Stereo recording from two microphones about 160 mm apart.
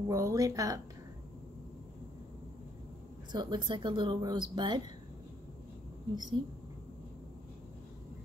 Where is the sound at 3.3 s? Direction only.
30° right (ahead or behind).